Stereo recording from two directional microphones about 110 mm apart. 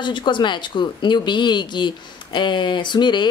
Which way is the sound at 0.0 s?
45° left (ahead or behind).